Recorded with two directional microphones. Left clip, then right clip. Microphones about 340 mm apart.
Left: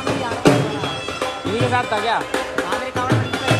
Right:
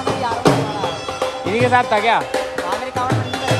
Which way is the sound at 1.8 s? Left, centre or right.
Centre.